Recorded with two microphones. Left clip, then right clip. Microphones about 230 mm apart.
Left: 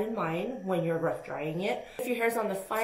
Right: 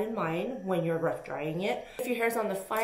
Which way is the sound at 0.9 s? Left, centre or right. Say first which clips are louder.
Even; right.